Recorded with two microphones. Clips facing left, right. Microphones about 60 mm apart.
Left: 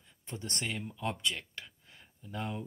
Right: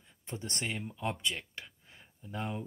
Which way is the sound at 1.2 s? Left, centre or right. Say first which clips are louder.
Even; centre.